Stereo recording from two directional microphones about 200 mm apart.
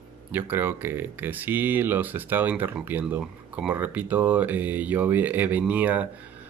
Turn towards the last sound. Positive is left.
turn(degrees=-10)  # may be behind; listen again after turning